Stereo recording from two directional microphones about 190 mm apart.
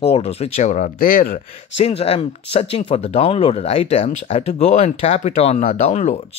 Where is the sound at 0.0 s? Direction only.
30° left (ahead or behind); by 1.4 s 45° left (ahead or behind).